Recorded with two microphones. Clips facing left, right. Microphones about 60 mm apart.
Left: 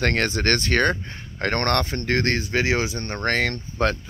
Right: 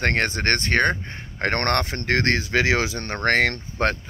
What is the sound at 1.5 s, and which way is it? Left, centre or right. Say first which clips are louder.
Speech: left 1 dB; right.